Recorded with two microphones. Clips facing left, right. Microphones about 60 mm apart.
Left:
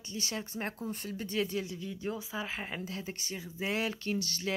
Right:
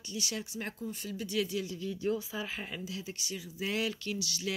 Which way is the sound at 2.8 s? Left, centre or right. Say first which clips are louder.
Left 1 dB; left.